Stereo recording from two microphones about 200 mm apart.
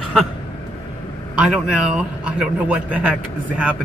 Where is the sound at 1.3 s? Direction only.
5° right (ahead or behind).